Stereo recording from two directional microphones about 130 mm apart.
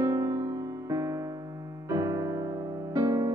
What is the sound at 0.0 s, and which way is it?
Music, 25° right (ahead or behind).